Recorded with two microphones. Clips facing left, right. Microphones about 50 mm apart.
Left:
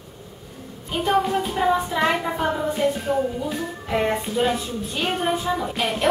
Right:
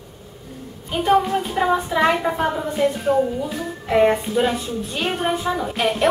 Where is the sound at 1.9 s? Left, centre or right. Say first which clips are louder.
Right 3 dB; centre.